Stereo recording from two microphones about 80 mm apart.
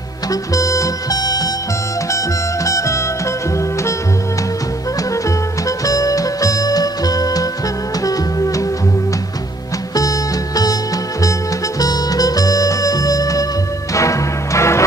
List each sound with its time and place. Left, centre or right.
0.3 s music: left
2.0 s music: left
5.7 s music: left
9.9 s music: left
11.8 s music: left